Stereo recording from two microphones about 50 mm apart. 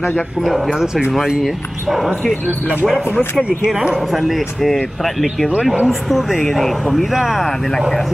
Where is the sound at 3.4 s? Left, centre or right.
Centre.